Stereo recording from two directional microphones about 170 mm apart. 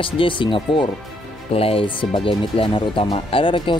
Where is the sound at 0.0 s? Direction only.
30° left (ahead or behind).